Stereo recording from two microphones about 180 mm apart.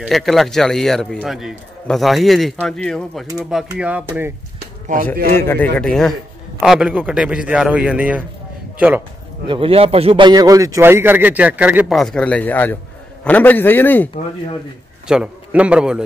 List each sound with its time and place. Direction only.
0.0 s speech: centre (ahead or behind)
5.4 s a man's voice: 10° left (ahead or behind); by 9.0 s 10° right (ahead or behind)
9.5 s a man's voice: 30° right (ahead or behind); by 12.0 s 10° right (ahead or behind)
12.0 s a man's voice: 5° left (ahead or behind)
15.0 s speech: 5° right (ahead or behind)